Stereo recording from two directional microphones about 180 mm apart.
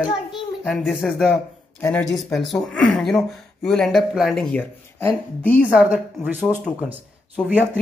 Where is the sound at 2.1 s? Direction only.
Centre (ahead or behind).